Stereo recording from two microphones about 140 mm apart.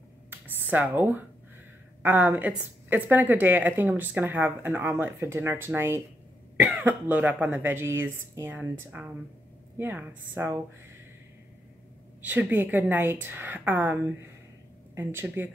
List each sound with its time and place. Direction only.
0.3 s a sound: 10° right (ahead or behind)
2.0 s a woman's voice: 15° right (ahead or behind)
12.3 s a woman's voice: 15° right (ahead or behind)